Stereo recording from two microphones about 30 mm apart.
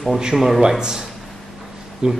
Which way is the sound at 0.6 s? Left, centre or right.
Right.